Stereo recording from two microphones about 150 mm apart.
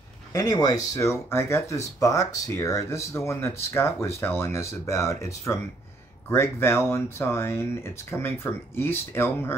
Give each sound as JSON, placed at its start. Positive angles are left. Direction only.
{"t": 0.3, "sound": "speech", "side_deg": 25}